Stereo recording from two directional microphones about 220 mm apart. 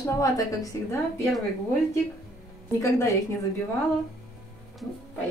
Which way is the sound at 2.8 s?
15° left (ahead or behind).